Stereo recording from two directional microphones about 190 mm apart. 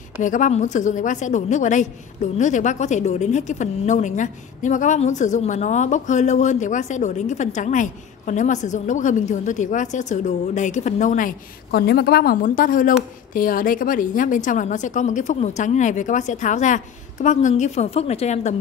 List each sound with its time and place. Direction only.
0.2 s a woman's voice: 40° left (ahead or behind)